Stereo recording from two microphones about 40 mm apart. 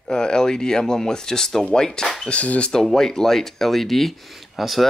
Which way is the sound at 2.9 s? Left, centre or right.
Centre.